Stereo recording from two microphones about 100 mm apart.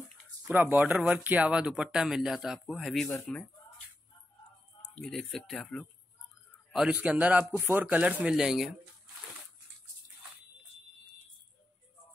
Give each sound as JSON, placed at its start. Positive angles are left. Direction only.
{"t": 0.5, "sound": "speech", "side_deg": -20}
{"t": 3.1, "sound": "speech", "side_deg": 20}
{"t": 4.9, "sound": "speech", "side_deg": 5}
{"t": 6.9, "sound": "speech", "side_deg": -15}